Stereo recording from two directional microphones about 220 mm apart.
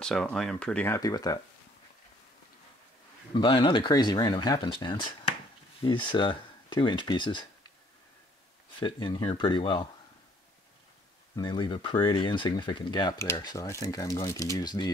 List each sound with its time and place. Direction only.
0.0 s speech: 5° left (ahead or behind)
3.3 s speech: 20° left (ahead or behind)
8.7 s speech: 20° left (ahead or behind)
11.3 s speech: 20° left (ahead or behind)